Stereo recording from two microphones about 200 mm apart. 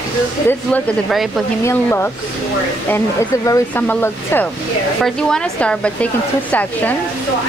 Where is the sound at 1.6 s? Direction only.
10° left (ahead or behind).